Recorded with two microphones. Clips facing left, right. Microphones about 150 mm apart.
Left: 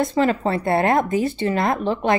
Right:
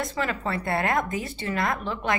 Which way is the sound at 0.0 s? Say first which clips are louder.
Left 9 dB; 30° left (ahead or behind).